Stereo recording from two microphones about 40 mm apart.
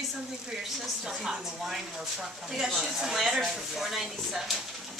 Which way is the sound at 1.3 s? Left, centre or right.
Centre.